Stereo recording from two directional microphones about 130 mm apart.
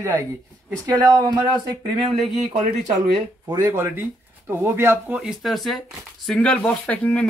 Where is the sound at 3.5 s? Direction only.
20° right (ahead or behind).